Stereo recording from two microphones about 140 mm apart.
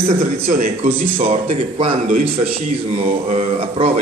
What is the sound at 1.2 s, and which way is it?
A man's voice, 50° right (ahead or behind).